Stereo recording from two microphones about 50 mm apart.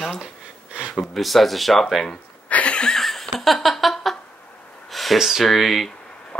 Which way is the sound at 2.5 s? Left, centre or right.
Left.